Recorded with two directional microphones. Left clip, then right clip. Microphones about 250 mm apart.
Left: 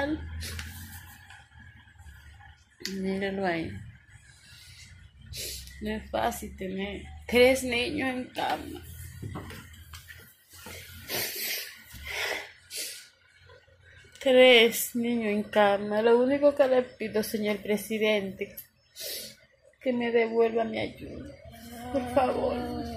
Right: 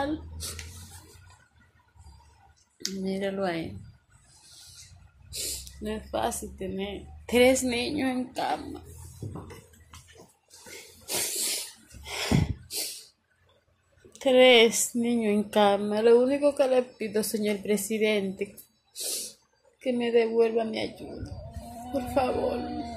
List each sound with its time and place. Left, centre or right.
0.0 s speech: centre
2.8 s speech: centre
5.3 s speech: centre
11.1 s a sound: centre
14.1 s speech: centre
19.8 s speech: centre
22.1 s speech: centre